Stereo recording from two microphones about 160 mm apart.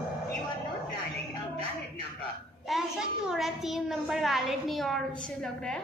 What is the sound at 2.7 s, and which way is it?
A child's voice, centre (ahead or behind).